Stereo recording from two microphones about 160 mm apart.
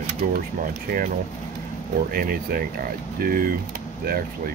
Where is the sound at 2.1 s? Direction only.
65° right (ahead or behind).